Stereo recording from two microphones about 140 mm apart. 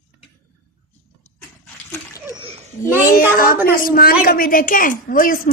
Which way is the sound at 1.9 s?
20° left (ahead or behind).